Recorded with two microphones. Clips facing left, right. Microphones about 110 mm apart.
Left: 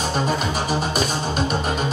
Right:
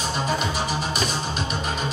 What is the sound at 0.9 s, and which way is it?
Music, 45° left (ahead or behind).